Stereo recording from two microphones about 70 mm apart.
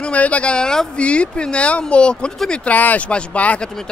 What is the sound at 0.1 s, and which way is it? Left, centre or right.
Speech, centre.